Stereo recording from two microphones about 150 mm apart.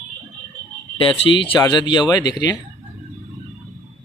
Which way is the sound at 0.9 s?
35° left (ahead or behind).